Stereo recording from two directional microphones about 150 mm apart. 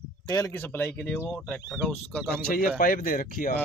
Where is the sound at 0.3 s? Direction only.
15° left (ahead or behind).